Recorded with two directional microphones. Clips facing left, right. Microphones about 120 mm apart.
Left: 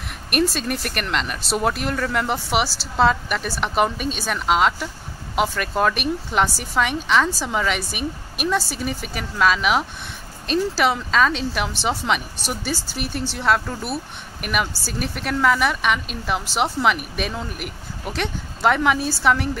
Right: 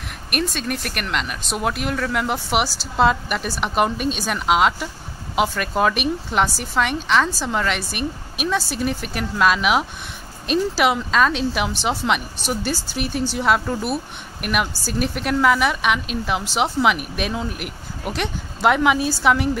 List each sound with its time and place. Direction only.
0.3 s a woman's voice: centre (ahead or behind)